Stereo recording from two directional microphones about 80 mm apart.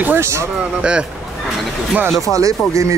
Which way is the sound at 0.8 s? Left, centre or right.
Centre.